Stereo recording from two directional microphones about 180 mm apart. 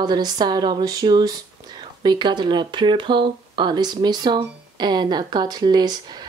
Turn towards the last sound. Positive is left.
turn(degrees=-25)  # may be behind; listen again after turning